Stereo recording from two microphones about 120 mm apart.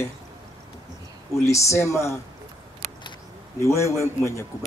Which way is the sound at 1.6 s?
25° left (ahead or behind).